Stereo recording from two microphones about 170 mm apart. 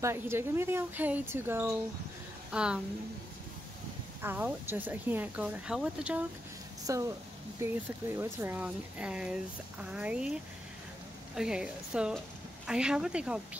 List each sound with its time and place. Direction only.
0.0 s speech: 15° right (ahead or behind)
4.2 s speech: 10° right (ahead or behind)
6.9 s speech: 20° right (ahead or behind)
11.3 s speech: 5° right (ahead or behind)